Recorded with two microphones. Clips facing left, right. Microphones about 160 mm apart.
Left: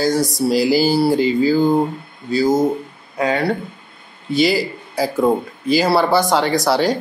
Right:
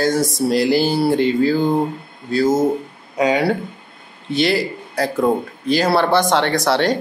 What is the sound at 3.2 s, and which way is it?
Speech, 15° right (ahead or behind).